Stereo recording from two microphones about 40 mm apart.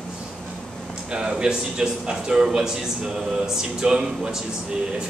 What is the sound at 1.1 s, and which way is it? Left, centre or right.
A man's voice, centre.